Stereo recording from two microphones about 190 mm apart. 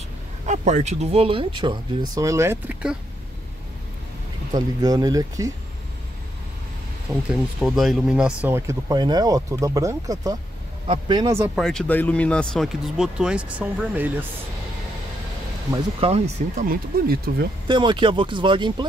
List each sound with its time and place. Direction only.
0.5 s speech: 40° right (ahead or behind); by 3.0 s 5° right (ahead or behind)
4.5 s speech: 20° right (ahead or behind)
7.2 s speech: centre (ahead or behind)
11.5 s speech: 5° left (ahead or behind)
15.7 s speech: 30° right (ahead or behind)
16.6 s speech: 55° right (ahead or behind)
17.6 s speech: 25° right (ahead or behind)